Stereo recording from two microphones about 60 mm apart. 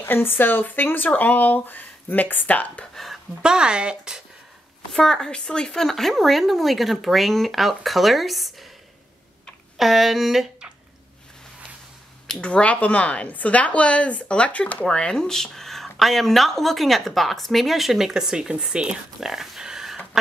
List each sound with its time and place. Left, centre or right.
0.0 s speech: left
2.8 s speech: centre
3.4 s speech: centre
4.9 s speech: centre
5.9 s speech: centre
9.8 s speech: centre
12.4 s speech: centre
14.9 s speech: centre